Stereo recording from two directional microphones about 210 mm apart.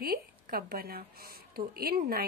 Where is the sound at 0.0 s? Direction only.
45° right (ahead or behind).